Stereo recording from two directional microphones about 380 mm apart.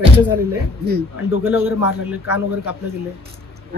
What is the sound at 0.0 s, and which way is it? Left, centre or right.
Speech, centre.